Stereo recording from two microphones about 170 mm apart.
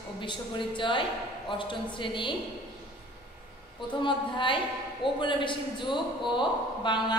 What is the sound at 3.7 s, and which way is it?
A woman's voice, 30° left (ahead or behind).